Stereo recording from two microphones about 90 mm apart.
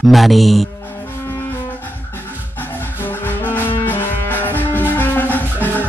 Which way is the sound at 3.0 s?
20° left (ahead or behind).